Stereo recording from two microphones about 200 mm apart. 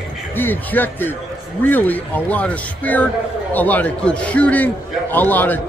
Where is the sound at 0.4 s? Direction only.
10° left (ahead or behind).